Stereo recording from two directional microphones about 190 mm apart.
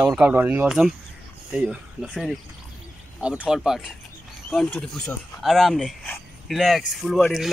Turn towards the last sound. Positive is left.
turn(degrees=0)  # may be behind; listen again after turning